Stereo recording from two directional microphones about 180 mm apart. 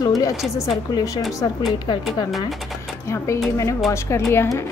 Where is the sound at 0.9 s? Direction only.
20° left (ahead or behind).